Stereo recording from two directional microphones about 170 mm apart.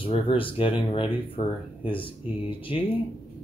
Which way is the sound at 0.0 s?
30° left (ahead or behind).